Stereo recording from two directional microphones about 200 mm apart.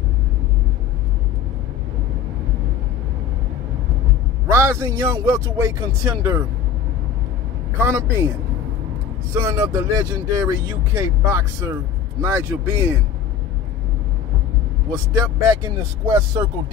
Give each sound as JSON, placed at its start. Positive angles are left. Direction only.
{"t": 4.5, "sound": "speech", "side_deg": -15}
{"t": 7.7, "sound": "speech", "side_deg": -10}
{"t": 9.3, "sound": "speech", "side_deg": -15}
{"t": 14.9, "sound": "speech", "side_deg": -15}